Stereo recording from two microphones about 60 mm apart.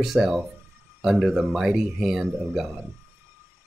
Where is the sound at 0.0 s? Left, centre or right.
Centre.